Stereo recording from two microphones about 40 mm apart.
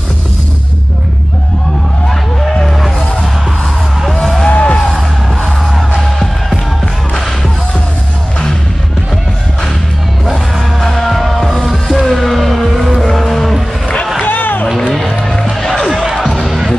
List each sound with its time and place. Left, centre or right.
4.1 s music: centre
4.5 s music: left
5.8 s music: centre
10.3 s music: centre
14.2 s music: left
15.2 s music: left
15.6 s music: centre
16.0 s music: centre